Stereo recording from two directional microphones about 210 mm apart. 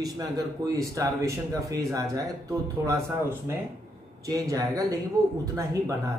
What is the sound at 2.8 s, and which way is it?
Speech, 15° right (ahead or behind).